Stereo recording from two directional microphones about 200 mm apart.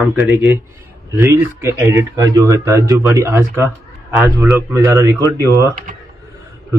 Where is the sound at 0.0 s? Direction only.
10° right (ahead or behind).